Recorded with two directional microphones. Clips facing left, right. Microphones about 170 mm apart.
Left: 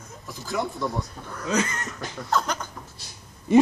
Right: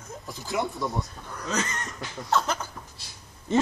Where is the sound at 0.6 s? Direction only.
Centre (ahead or behind).